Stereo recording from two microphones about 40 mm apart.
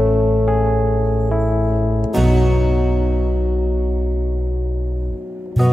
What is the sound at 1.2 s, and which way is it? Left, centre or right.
Music, centre.